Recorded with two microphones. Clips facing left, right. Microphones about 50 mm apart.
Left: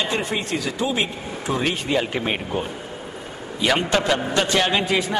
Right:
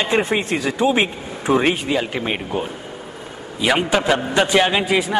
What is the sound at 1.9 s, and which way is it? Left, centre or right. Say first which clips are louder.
A man's voice: right 1 dB; centre.